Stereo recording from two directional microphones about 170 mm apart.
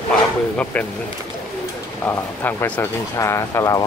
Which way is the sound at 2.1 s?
10° left (ahead or behind).